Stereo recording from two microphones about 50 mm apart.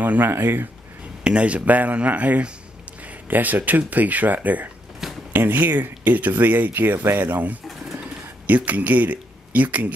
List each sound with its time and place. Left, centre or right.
0.0 s speech: right
0.3 s speech: right
1.2 s speech: right